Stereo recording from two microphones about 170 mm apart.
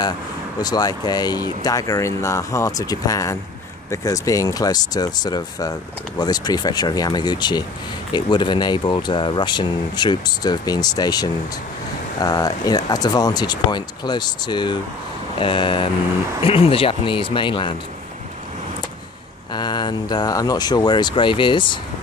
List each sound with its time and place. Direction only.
0.6 s speech: 20° left (ahead or behind)
19.5 s speech: 25° left (ahead or behind)